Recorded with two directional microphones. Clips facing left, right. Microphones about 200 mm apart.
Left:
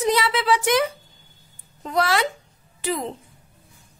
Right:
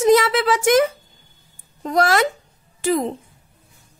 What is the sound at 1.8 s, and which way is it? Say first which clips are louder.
A woman's voice: right 4 dB; 45° right (ahead or behind).